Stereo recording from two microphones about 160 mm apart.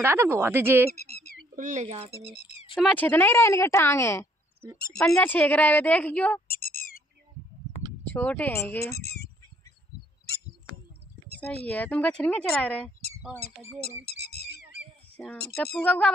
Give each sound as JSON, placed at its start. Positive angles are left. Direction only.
{"t": 0.0, "sound": "speech", "side_deg": -15}
{"t": 0.9, "sound": "bird", "side_deg": 75}
{"t": 1.5, "sound": "speech", "side_deg": -50}
{"t": 2.3, "sound": "speech", "side_deg": 45}
{"t": 2.9, "sound": "speech", "side_deg": 10}
{"t": 6.5, "sound": "a sound", "side_deg": 65}
{"t": 8.1, "sound": "speech", "side_deg": 10}
{"t": 8.9, "sound": "speech", "side_deg": 80}
{"t": 11.4, "sound": "speech", "side_deg": 10}
{"t": 13.8, "sound": "a sound", "side_deg": 80}
{"t": 15.2, "sound": "speech", "side_deg": 10}